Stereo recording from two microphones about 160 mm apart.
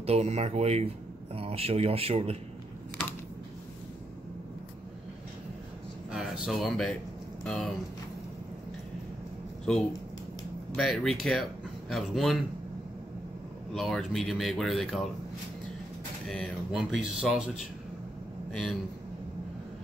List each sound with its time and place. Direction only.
0.0 s speech: 40° right (ahead or behind)
6.1 s speech: 5° right (ahead or behind)
9.7 s speech: 5° left (ahead or behind)
13.7 s speech: centre (ahead or behind)
16.3 s a man's voice: centre (ahead or behind)